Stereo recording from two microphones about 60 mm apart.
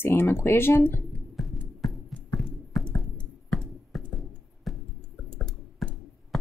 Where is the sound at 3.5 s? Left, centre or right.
Centre.